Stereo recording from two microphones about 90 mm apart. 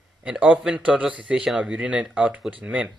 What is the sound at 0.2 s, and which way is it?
A man's voice, 10° right (ahead or behind).